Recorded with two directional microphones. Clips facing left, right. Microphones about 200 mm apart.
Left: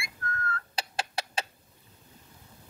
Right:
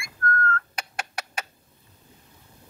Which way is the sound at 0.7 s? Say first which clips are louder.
Left 1 dB; 30° left (ahead or behind).